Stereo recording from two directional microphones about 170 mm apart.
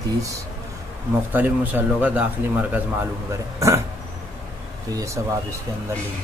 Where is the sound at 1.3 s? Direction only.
10° right (ahead or behind).